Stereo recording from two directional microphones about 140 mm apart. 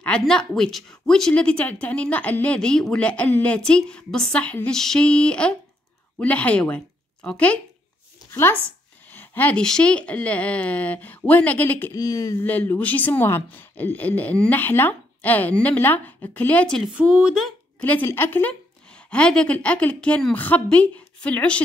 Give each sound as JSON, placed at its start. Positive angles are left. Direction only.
{"t": 0.0, "sound": "speech", "side_deg": 5}
{"t": 11.9, "sound": "speech", "side_deg": 25}
{"t": 12.4, "sound": "speech", "side_deg": 10}
{"t": 16.9, "sound": "speech", "side_deg": -5}
{"t": 17.8, "sound": "speech", "side_deg": 15}